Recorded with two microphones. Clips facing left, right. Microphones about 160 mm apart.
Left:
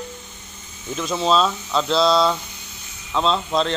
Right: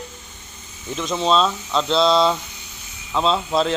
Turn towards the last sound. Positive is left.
turn(degrees=-5)  # may be behind; listen again after turning